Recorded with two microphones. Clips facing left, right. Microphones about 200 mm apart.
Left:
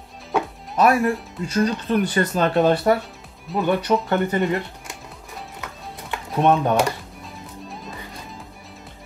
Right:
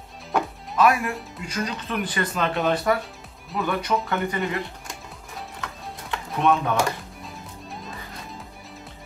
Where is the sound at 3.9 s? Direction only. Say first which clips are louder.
Left 4 dB; 35° left (ahead or behind).